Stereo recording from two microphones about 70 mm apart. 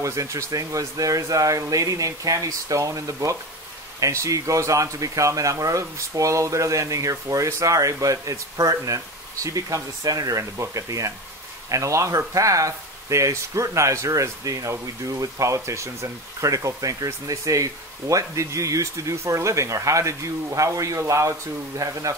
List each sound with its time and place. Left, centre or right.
0.0 s speech: right